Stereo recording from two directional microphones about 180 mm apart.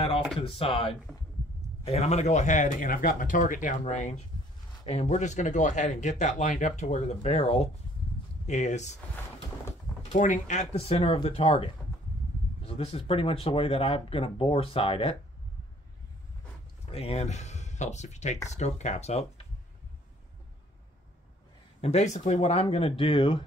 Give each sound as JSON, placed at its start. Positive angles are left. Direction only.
{"t": 0.4, "sound": "speech", "side_deg": 30}
{"t": 10.1, "sound": "speech", "side_deg": 45}
{"t": 16.8, "sound": "speech", "side_deg": 35}
{"t": 21.8, "sound": "speech", "side_deg": 40}